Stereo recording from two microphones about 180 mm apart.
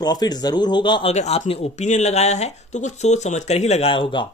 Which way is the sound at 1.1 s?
40° left (ahead or behind).